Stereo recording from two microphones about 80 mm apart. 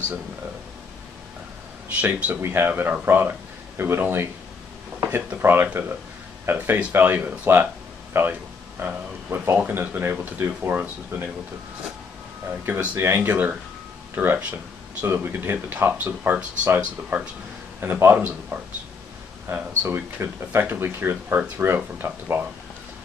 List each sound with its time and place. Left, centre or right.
2.0 s speech: centre
12.8 s speech: right